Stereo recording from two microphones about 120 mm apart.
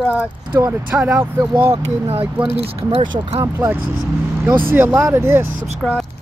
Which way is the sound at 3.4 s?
20° right (ahead or behind).